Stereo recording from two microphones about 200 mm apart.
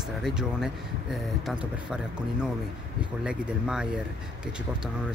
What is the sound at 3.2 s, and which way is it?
Speech, 5° right (ahead or behind).